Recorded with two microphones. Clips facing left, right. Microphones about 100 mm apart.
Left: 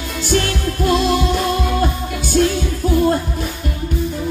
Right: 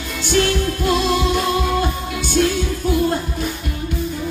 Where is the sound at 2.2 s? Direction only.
45° left (ahead or behind).